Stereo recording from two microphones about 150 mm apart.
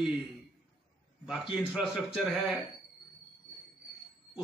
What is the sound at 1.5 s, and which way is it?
A man's voice, 5° right (ahead or behind).